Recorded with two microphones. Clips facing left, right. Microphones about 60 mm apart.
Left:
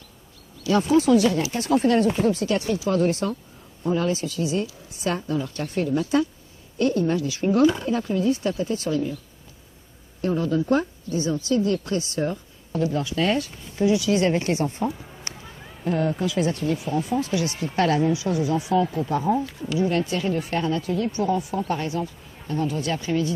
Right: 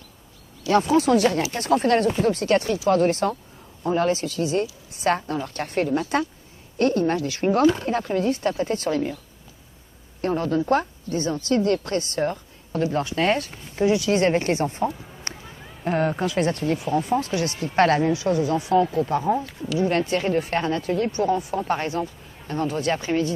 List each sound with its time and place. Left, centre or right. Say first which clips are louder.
0.7 s a woman's voice: even; right
10.2 s a woman's voice: even; right
14.9 s a sound: left 1 dB; centre
15.8 s a woman's voice: right 1 dB; right
19.6 s speech: right 1 dB; centre
19.9 s a woman's voice: right 2 dB; right